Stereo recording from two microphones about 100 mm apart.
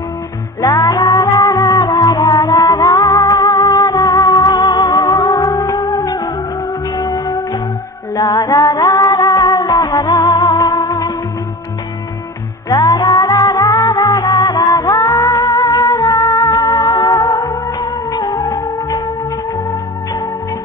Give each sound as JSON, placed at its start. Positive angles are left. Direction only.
{"t": 0.6, "sound": "music", "side_deg": 35}
{"t": 12.6, "sound": "music", "side_deg": 40}